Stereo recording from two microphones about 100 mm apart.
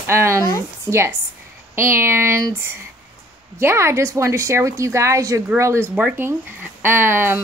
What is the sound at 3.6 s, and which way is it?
Speech, 25° right (ahead or behind).